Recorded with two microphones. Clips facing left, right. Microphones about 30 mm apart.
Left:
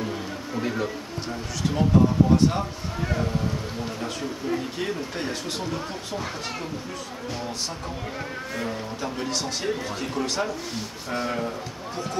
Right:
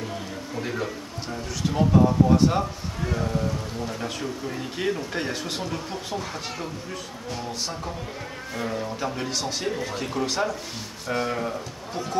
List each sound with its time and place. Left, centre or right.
0.6 s speech: centre
1.9 s speech: centre
4.0 s speech: centre
8.5 s speech: centre